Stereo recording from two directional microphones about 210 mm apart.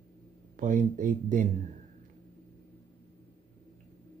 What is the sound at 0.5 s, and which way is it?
Speech, 40° right (ahead or behind).